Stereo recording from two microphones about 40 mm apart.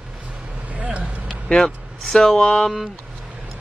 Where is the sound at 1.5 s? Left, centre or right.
Centre.